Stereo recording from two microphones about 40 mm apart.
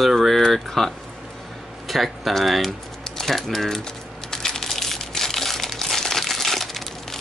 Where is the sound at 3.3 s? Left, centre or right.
Centre.